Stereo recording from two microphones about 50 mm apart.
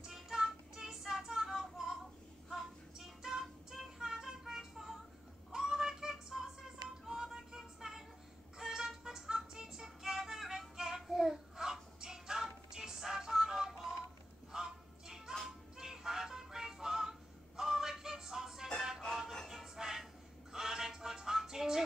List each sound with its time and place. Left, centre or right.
0.1 s child singing: centre
7.1 s a sound: centre
8.5 s music: centre